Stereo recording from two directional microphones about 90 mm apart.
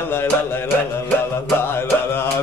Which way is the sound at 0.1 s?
25° left (ahead or behind).